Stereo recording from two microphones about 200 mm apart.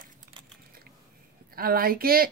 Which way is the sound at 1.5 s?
45° right (ahead or behind).